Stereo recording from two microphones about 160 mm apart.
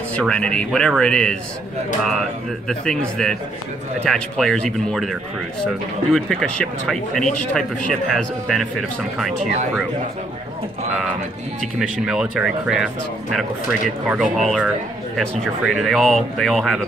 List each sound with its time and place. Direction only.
0.1 s speech: 5° left (ahead or behind)
2.7 s speech: 5° left (ahead or behind)
6.1 s speech: 5° left (ahead or behind)
11.8 s speech: 5° right (ahead or behind)